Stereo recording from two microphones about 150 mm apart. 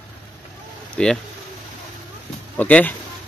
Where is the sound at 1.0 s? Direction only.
5° left (ahead or behind).